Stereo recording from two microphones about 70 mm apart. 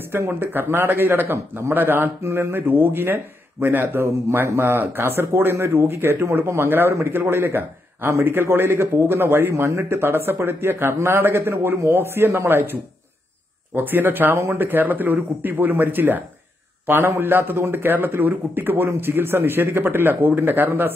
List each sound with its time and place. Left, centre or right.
0.1 s speech: right
13.7 s speech: right